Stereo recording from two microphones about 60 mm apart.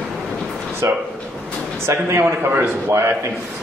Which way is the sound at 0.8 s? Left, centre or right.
Right.